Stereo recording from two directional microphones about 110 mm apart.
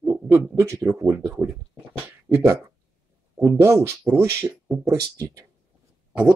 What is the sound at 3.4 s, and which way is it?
Speech, 25° right (ahead or behind).